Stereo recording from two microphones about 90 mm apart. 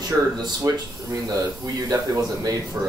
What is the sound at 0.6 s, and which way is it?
Speech, 35° right (ahead or behind).